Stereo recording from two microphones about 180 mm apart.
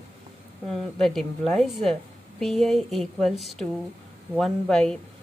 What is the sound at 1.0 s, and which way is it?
A woman's voice, centre (ahead or behind).